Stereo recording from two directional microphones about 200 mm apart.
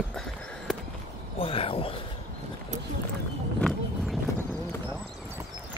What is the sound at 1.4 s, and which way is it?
Speech, 30° left (ahead or behind).